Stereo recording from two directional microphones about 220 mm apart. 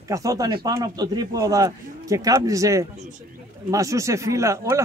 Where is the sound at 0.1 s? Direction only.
15° right (ahead or behind).